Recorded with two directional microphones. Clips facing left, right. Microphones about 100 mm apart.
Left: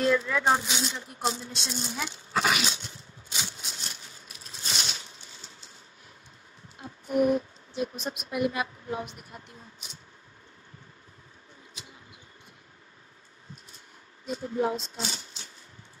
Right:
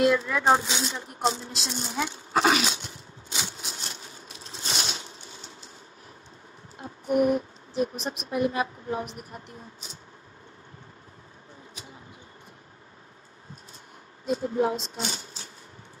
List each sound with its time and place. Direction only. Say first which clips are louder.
0.1 s a sound: right 2 dB; 20° right (ahead or behind)
7.2 s a woman's voice: even; 45° right (ahead or behind)
14.2 s speech: right 3 dB; 30° right (ahead or behind)